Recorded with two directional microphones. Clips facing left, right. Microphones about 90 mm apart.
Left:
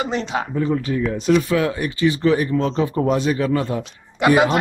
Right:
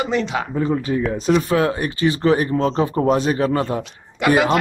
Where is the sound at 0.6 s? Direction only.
25° right (ahead or behind).